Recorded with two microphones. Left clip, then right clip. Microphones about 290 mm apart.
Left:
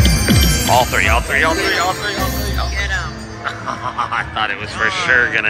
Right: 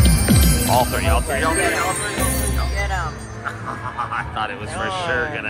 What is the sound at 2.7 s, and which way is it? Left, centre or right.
Music, centre.